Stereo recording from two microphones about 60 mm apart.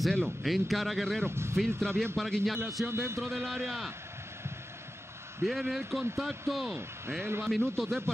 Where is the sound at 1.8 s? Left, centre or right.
Centre.